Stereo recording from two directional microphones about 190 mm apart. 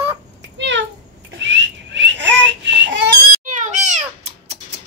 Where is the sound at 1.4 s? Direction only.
70° right (ahead or behind).